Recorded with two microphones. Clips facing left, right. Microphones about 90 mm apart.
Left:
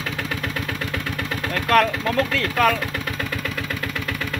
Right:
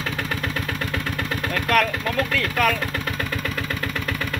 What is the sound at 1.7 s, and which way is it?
Speech, 25° left (ahead or behind).